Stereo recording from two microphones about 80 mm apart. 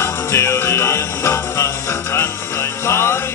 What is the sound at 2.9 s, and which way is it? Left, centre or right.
Music, left.